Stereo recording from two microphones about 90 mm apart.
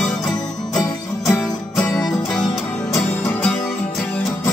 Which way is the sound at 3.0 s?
25° left (ahead or behind).